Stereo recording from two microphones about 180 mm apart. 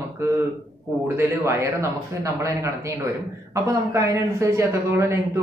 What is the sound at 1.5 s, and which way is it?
Speech, 15° right (ahead or behind).